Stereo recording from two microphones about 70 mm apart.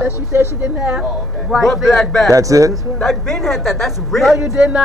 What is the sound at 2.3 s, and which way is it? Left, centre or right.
Speech, right.